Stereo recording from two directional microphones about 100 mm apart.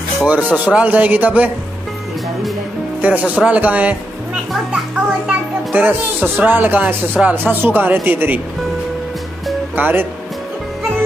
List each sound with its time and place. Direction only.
0.2 s speech: 15° right (ahead or behind)
3.0 s speech: 15° right (ahead or behind)
5.2 s a man's voice: 15° right (ahead or behind)
9.8 s a man's voice: 20° right (ahead or behind)